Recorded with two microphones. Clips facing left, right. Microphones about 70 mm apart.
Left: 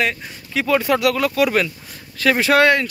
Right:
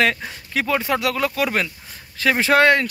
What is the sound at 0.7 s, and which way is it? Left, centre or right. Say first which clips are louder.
Speech: left 6 dB; right.